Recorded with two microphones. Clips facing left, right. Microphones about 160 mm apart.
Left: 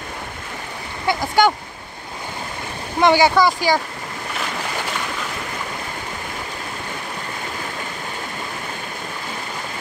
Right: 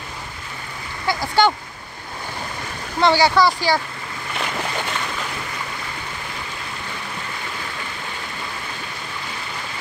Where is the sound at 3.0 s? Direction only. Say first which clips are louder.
Left 1 dB; 15° left (ahead or behind).